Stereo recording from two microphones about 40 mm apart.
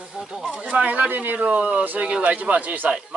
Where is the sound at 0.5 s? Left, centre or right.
Right.